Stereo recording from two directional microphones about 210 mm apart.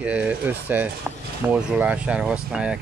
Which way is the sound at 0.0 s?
5° right (ahead or behind).